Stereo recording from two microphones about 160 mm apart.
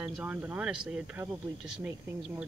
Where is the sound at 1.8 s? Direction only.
15° right (ahead or behind).